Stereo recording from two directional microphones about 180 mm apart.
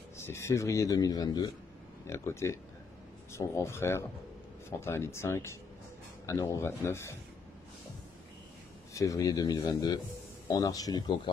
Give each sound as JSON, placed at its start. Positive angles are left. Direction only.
{"t": 0.2, "sound": "a man's voice", "side_deg": 15}
{"t": 8.9, "sound": "speech", "side_deg": 20}